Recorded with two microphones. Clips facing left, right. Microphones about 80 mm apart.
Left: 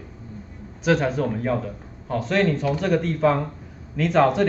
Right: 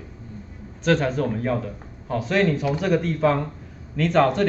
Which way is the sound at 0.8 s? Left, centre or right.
Centre.